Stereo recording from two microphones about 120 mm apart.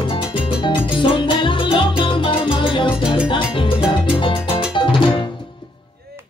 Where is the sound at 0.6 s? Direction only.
45° left (ahead or behind).